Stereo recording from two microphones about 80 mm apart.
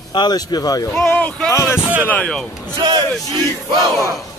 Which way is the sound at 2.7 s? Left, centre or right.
Right.